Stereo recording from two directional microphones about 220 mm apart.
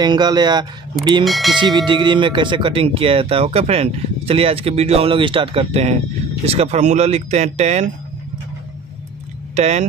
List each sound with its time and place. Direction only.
0.0 s speech: 20° right (ahead or behind)
1.2 s speech: centre (ahead or behind)
1.8 s speech: 20° right (ahead or behind)
9.6 s speech: 30° right (ahead or behind)